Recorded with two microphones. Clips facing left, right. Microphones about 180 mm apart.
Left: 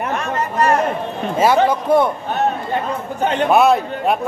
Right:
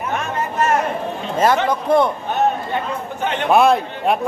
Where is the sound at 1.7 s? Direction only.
5° left (ahead or behind).